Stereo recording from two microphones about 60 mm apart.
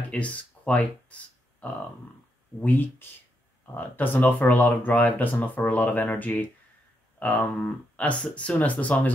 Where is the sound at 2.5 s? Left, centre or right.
Left.